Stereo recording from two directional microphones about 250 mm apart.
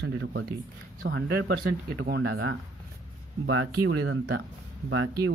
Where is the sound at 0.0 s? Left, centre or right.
Right.